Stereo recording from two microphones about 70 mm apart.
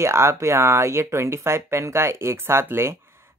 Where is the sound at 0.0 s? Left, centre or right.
Right.